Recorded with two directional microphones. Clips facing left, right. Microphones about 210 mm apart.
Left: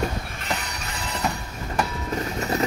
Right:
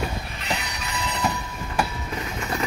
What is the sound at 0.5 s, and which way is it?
Train wheels squealing, 45° left (ahead or behind).